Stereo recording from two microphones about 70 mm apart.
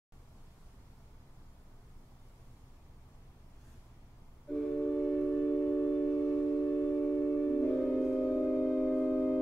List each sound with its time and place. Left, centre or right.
4.7 s music: left
6.7 s a sound: left
7.3 s music: left
7.7 s music: centre